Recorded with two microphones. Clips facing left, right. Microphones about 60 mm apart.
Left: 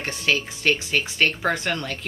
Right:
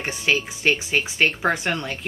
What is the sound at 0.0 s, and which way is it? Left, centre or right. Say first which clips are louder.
Speech: right 1 dB; centre.